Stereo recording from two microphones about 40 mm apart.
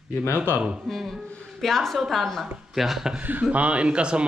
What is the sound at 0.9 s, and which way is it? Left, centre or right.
A woman's voice, centre.